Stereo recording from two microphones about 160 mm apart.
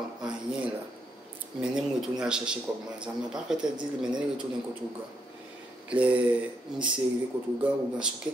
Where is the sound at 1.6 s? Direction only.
5° right (ahead or behind).